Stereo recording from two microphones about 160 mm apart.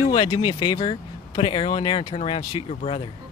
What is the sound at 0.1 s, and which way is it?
Speech, 30° left (ahead or behind).